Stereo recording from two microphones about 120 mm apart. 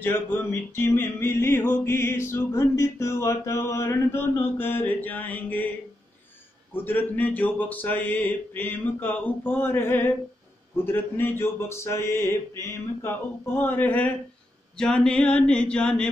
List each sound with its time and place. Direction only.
0.0 s music: 15° left (ahead or behind)
6.7 s speech: 15° left (ahead or behind)
10.8 s music: 20° left (ahead or behind)
14.8 s speech: 5° left (ahead or behind)